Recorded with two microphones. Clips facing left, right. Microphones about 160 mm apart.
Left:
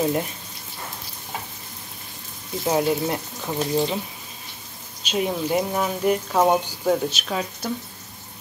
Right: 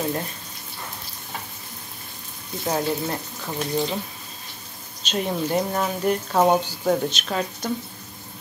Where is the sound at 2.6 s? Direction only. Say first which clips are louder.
Left 3 dB; 15° left (ahead or behind).